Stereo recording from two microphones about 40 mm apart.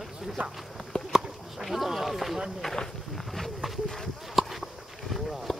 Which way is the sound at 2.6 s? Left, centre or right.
Centre.